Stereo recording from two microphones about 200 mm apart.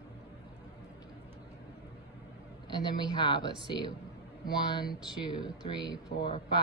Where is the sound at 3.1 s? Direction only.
20° left (ahead or behind).